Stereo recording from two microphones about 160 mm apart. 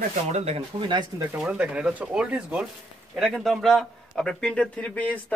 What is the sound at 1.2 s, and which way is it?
A man's voice, 10° right (ahead or behind).